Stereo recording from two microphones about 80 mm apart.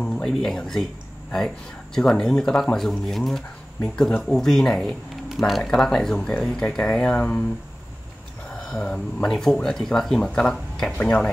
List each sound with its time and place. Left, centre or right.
0.1 s speech: centre
2.0 s speech: centre
8.5 s speech: centre
11.0 s speech: centre